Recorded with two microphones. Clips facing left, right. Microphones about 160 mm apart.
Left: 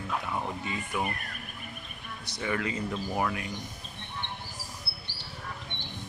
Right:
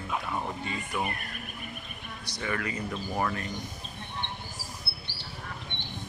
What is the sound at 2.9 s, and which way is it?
Speech, 10° left (ahead or behind).